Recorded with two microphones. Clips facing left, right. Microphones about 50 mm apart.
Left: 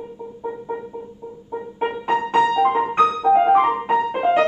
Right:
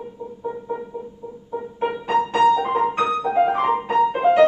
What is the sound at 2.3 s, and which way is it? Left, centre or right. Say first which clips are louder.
Music: left 1 dB; left.